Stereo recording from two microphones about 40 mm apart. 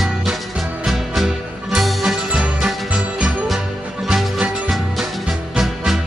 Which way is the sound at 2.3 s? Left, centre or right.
Centre.